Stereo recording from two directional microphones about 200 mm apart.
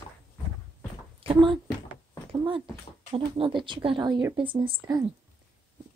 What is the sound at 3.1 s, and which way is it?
Speech, 25° right (ahead or behind).